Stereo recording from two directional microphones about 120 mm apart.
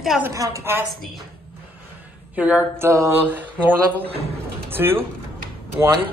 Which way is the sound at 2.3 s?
15° right (ahead or behind).